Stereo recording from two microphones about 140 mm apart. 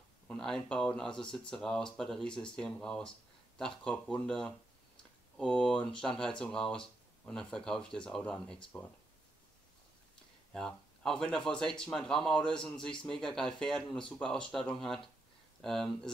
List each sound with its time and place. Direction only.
0.3 s speech: 5° left (ahead or behind)
10.5 s speech: 5° left (ahead or behind)